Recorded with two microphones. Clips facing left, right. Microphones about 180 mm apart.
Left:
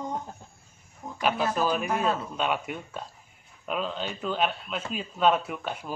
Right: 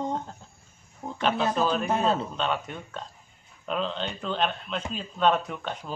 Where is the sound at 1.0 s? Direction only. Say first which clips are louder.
Right 3 dB; 25° right (ahead or behind).